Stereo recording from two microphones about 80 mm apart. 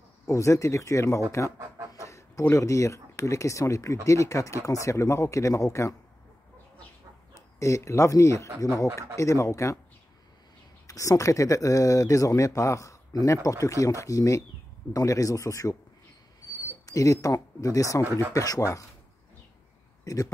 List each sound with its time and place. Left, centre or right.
0.3 s speech: left
1.9 s chicken: left
2.5 s speech: left
7.3 s speech: left
8.5 s speech: right
8.9 s speech: left
10.9 s speech: left
16.8 s speech: left
20.1 s speech: left